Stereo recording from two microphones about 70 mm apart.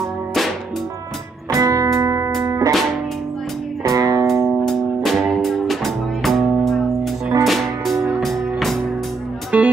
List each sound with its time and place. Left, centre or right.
1.5 s music: right
3.8 s music: right
4.6 s music: centre
9.5 s music: centre